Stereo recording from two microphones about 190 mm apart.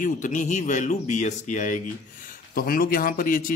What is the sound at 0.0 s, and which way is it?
Speech, 40° left (ahead or behind).